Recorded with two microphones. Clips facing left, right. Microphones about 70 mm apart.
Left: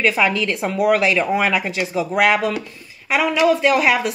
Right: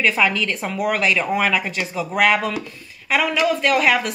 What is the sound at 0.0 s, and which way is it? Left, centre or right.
A woman's voice, centre.